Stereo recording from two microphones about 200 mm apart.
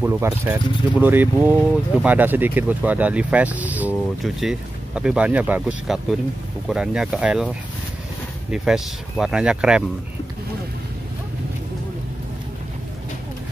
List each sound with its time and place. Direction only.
0.0 s speech: 10° right (ahead or behind)